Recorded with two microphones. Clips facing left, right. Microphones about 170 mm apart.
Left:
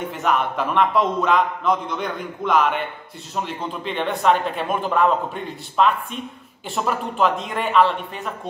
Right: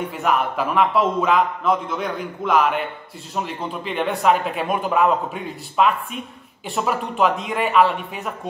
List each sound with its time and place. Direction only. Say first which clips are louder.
0.1 s speech: left 1 dB; 5° right (ahead or behind)